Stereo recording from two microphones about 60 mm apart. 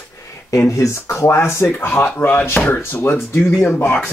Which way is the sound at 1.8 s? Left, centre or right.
Left.